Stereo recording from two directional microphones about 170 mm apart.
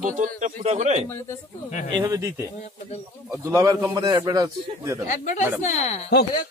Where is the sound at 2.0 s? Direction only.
20° right (ahead or behind).